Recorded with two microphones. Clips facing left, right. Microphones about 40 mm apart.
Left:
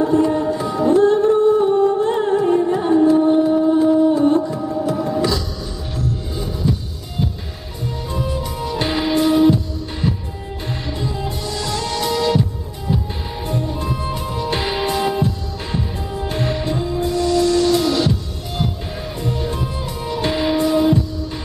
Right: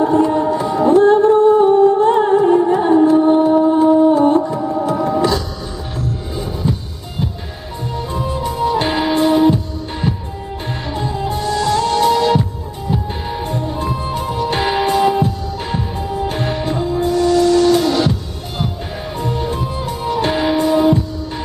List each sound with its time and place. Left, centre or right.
0.0 s music: centre
3.3 s a sound: right
4.7 s music: right
8.1 s music: centre
11.1 s music: right
19.2 s music: centre